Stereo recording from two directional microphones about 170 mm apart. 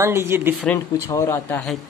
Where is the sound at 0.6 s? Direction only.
15° left (ahead or behind).